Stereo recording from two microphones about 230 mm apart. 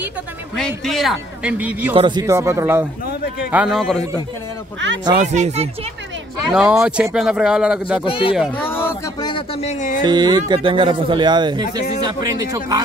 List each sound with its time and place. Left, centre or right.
0.6 s speech: centre
2.0 s speech: centre
5.1 s speech: right
6.5 s speech: centre
8.0 s speech: left
8.4 s a sound: centre
9.3 s speech: left
10.0 s speech: centre